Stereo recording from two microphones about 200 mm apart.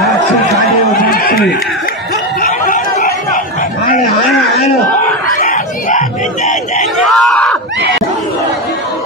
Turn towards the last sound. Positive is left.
turn(degrees=0)  # may be behind; listen again after turning